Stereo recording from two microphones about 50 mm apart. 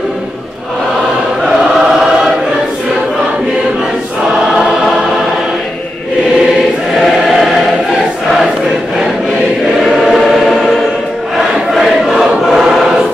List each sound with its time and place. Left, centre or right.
7.0 s choir: centre
9.8 s choir: centre
11.8 s choir: centre